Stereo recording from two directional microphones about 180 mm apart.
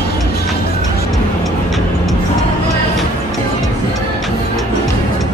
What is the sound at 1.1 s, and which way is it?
Music, centre (ahead or behind).